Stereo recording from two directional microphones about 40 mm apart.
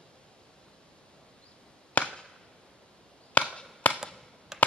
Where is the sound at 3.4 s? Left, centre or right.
Left.